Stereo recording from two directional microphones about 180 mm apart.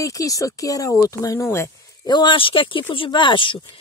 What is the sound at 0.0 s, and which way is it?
Speech, 20° left (ahead or behind).